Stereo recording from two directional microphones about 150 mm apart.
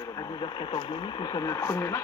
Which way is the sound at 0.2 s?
30° left (ahead or behind).